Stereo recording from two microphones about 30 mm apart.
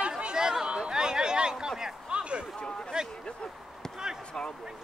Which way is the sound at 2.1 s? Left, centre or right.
Right.